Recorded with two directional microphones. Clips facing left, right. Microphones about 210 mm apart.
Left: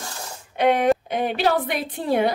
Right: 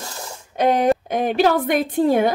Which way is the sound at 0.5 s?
40° right (ahead or behind).